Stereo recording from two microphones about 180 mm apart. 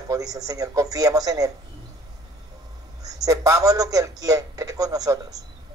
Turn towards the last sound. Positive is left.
turn(degrees=-20)  # may be behind; listen again after turning